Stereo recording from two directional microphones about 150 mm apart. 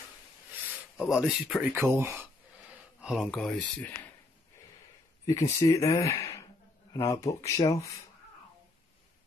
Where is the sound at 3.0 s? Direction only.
5° right (ahead or behind).